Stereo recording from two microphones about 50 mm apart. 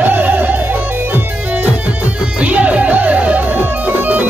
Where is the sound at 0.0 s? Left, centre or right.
Right.